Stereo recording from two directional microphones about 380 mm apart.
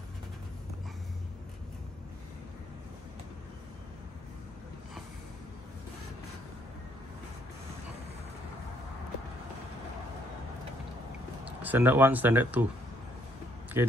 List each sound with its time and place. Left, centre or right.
11.4 s speech: centre
13.8 s speech: centre